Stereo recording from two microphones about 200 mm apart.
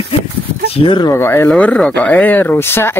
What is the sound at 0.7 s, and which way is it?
Speech, 25° left (ahead or behind).